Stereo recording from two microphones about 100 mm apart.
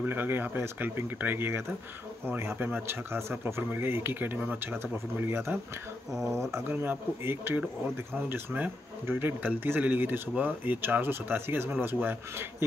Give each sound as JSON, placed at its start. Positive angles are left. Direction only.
{"t": 0.0, "sound": "speech", "side_deg": -20}
{"t": 6.7, "sound": "speech", "side_deg": -20}